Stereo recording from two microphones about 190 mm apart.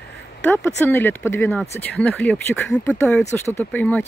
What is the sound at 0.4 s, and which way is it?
Speech, 10° left (ahead or behind).